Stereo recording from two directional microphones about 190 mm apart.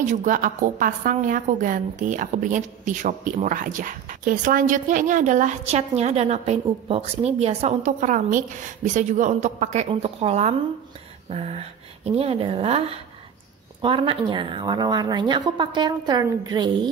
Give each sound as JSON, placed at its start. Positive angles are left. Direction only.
{"t": 0.0, "sound": "a woman's voice", "side_deg": -40}